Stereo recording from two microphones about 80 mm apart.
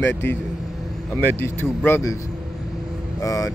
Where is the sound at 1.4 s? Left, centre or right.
Left.